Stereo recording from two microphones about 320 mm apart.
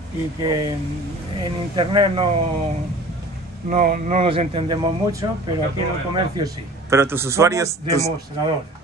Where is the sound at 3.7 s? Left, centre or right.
Right.